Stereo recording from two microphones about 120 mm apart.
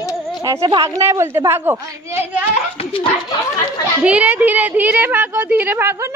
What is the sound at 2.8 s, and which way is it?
Speech, 55° left (ahead or behind).